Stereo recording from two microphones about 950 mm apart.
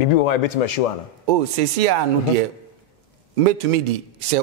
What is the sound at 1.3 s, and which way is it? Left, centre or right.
Speech, right.